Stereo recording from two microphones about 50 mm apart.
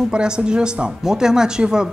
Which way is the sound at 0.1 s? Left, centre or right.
Centre.